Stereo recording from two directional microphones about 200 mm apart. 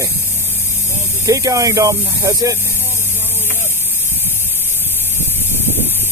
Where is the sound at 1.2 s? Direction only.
15° right (ahead or behind).